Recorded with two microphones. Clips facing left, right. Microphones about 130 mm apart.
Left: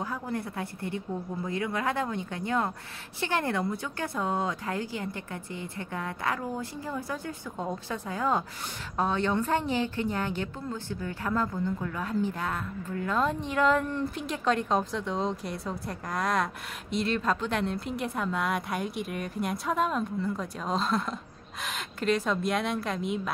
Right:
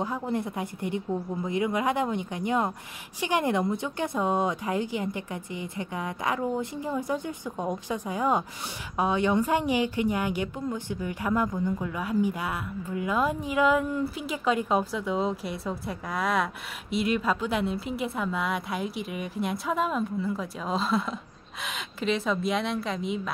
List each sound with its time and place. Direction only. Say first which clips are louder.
0.0 s a woman's voice: right 4 dB; 20° right (ahead or behind); by 23.3 s centre (ahead or behind)